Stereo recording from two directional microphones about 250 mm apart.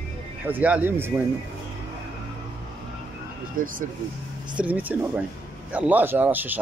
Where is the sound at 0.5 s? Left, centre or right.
Centre.